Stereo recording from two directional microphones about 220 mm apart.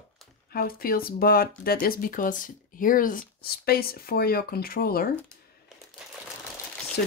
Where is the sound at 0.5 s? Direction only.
45° left (ahead or behind).